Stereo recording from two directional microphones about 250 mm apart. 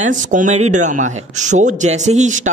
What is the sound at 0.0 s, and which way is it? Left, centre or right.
Speech, right.